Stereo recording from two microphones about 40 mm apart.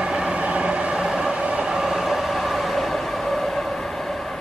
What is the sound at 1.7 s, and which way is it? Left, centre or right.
Train, centre.